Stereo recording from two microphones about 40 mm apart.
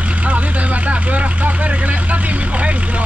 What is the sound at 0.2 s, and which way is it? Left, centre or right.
Vehicle, right.